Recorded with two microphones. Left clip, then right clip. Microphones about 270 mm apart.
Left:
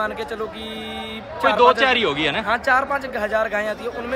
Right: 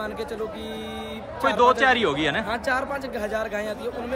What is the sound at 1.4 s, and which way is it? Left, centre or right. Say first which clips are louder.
A man's voice: left 4 dB; centre.